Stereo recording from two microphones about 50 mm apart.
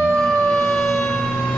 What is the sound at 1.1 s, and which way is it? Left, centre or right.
Fire engine, left.